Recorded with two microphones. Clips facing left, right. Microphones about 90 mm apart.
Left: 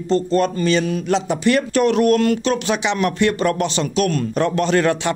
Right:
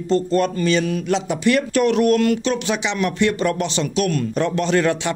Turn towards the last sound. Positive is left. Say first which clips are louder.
# left 1 dB
turn(degrees=50)  # may be behind; listen again after turning